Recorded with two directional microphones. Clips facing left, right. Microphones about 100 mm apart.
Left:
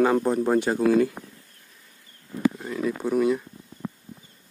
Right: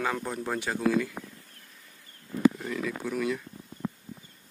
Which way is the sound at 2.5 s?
20° left (ahead or behind).